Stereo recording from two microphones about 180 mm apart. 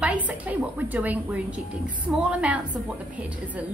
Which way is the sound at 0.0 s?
5° right (ahead or behind).